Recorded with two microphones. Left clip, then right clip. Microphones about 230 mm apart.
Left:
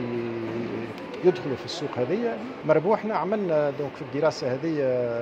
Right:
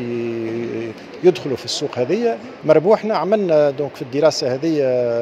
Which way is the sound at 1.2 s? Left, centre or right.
Right.